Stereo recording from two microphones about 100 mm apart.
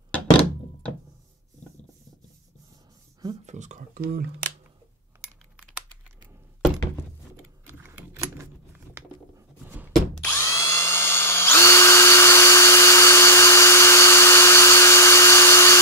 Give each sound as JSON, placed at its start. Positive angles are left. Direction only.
{"t": 7.6, "sound": "keys jangling", "side_deg": -25}
{"t": 10.2, "sound": "drill", "side_deg": 25}